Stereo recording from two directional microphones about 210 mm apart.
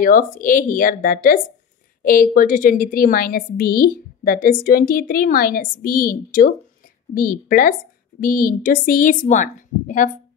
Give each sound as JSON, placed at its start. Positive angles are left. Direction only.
{"t": 0.0, "sound": "a woman's voice", "side_deg": 40}